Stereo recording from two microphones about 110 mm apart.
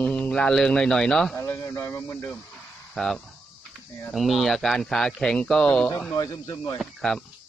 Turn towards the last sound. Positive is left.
turn(degrees=5)  # may be behind; listen again after turning